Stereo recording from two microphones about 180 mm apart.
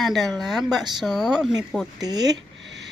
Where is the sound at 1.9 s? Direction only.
20° right (ahead or behind).